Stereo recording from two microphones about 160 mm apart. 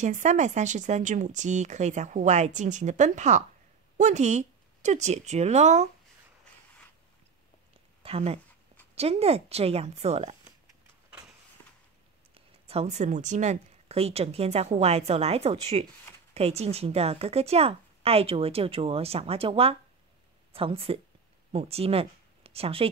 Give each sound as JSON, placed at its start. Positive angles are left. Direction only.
{"t": 0.0, "sound": "speech", "side_deg": -50}
{"t": 8.0, "sound": "speech", "side_deg": -40}
{"t": 12.4, "sound": "speech", "side_deg": -40}